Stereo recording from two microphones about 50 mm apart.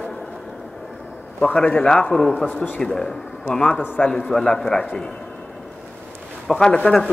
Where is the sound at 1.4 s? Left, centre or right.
Left.